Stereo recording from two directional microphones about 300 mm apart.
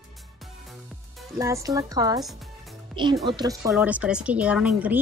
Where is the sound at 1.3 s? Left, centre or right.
Centre.